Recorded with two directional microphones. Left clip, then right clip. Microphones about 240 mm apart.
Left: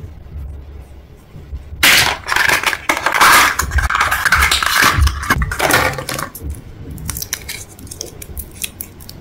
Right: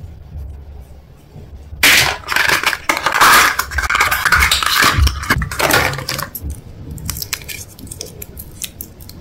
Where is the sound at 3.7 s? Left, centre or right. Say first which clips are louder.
Right 1 dB; centre.